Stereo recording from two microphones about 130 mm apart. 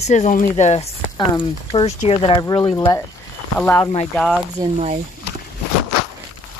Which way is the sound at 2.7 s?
25° left (ahead or behind).